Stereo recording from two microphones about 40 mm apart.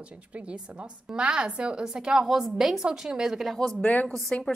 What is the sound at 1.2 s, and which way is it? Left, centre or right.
Speech, right.